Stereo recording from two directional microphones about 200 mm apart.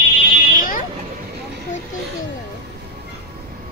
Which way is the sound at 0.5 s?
45° left (ahead or behind).